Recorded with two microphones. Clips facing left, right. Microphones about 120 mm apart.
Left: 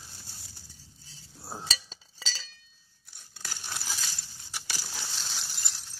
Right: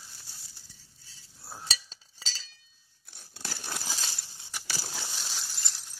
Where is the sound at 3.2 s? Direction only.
35° right (ahead or behind).